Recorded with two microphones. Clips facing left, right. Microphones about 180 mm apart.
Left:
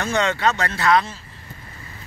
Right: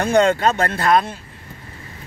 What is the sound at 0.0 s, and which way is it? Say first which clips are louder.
Speech: right 5 dB; 50° right (ahead or behind).